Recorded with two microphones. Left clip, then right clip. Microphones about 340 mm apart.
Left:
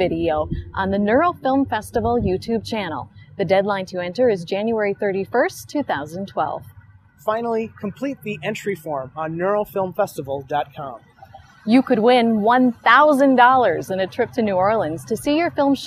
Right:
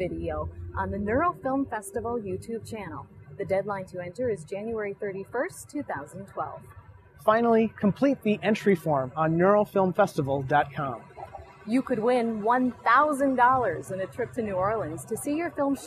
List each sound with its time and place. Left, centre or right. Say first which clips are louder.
0.0 s speech: left 12 dB; left
7.2 s speech: even; right
11.6 s a woman's voice: left 10 dB; left